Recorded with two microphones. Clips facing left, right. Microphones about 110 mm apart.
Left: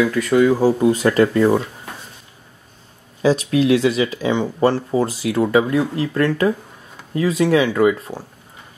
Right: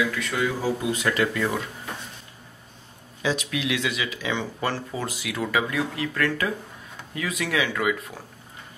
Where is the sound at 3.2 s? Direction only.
35° left (ahead or behind).